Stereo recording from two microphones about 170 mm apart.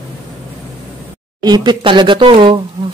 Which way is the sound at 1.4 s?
25° right (ahead or behind).